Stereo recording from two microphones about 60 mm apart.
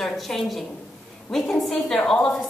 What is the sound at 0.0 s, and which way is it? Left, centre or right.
A woman's voice, centre.